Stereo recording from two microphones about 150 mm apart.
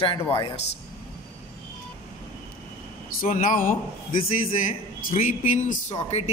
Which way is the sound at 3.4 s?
65° left (ahead or behind).